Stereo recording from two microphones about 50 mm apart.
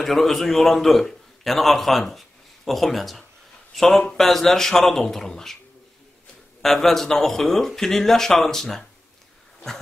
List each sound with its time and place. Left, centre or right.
0.0 s a man's voice: centre
6.6 s speech: centre